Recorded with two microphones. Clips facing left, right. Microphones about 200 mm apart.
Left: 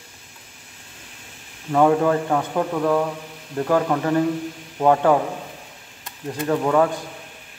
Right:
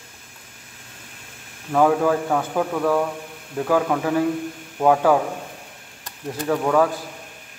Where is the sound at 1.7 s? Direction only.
Centre (ahead or behind).